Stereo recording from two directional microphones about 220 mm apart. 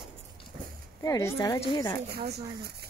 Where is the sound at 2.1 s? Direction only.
45° right (ahead or behind).